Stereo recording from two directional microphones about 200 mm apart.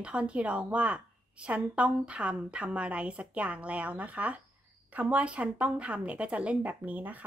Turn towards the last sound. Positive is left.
turn(degrees=-10)  # may be behind; listen again after turning